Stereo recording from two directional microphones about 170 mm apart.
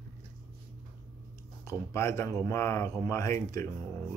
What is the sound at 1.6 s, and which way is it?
Speech, 15° left (ahead or behind).